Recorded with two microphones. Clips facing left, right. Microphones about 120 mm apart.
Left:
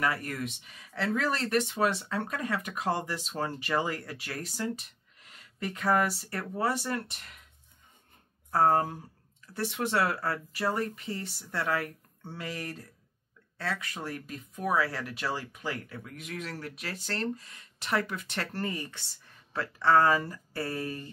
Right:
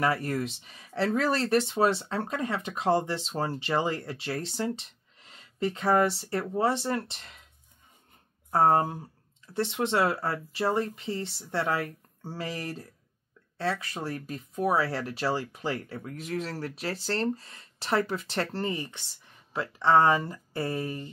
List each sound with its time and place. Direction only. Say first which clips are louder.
0.0 s speech: right 4 dB; 30° right (ahead or behind)
8.5 s speech: right 2 dB; 25° right (ahead or behind)